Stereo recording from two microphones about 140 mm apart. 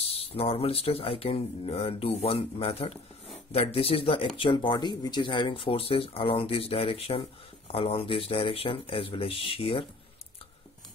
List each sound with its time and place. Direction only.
0.0 s speech: 45° left (ahead or behind)